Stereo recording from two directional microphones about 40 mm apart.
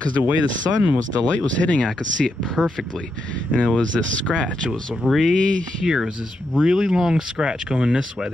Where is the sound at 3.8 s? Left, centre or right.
Left.